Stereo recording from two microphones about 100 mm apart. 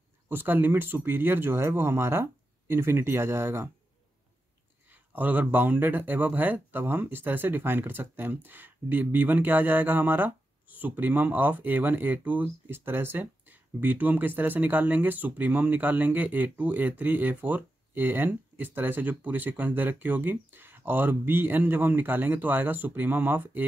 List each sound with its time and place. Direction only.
0.3 s speech: 20° right (ahead or behind)
4.8 s speech: 15° right (ahead or behind)